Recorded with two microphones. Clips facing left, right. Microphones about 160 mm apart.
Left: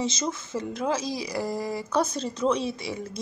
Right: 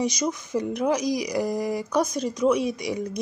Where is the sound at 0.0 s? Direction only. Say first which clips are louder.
Right 3 dB; 15° right (ahead or behind).